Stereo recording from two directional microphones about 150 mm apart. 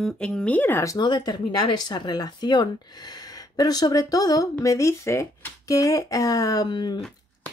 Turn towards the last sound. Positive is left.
turn(degrees=30)  # may be behind; listen again after turning